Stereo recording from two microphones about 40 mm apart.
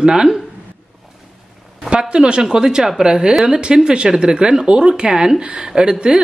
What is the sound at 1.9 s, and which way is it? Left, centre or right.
Speech, right.